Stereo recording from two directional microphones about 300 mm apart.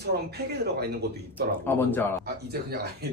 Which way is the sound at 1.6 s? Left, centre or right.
Centre.